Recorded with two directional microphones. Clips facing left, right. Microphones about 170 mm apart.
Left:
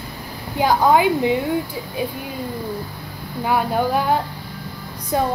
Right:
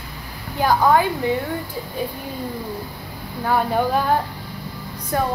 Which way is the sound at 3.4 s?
5° left (ahead or behind).